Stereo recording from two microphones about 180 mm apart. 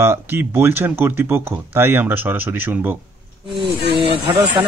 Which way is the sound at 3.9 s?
25° right (ahead or behind).